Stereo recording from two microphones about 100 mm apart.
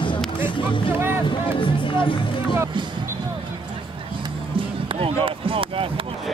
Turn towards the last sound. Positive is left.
turn(degrees=-65)  # may be behind; listen again after turning